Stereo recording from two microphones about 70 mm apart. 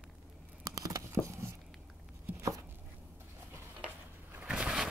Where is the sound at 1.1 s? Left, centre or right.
Right.